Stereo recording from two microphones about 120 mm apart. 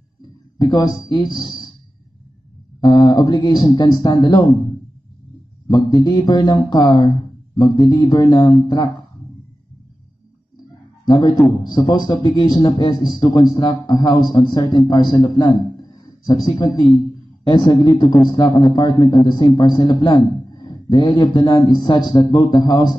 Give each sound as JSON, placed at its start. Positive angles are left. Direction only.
{"t": 0.6, "sound": "a man's voice", "side_deg": 30}
{"t": 2.8, "sound": "a man's voice", "side_deg": 35}
{"t": 5.7, "sound": "a man's voice", "side_deg": 35}
{"t": 11.1, "sound": "a man's voice", "side_deg": 40}
{"t": 17.9, "sound": "a man's voice", "side_deg": 35}